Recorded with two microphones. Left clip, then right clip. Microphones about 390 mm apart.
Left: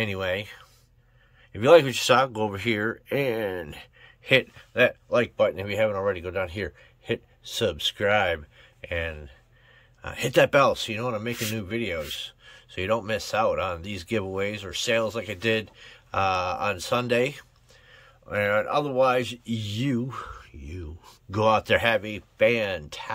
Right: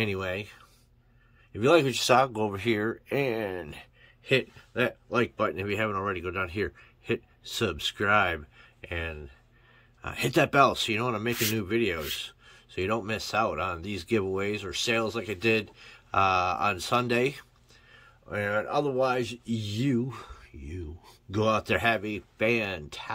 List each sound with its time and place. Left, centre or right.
0.0 s speech: centre